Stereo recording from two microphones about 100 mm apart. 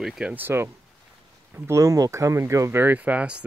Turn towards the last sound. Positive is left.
turn(degrees=-10)  # may be behind; listen again after turning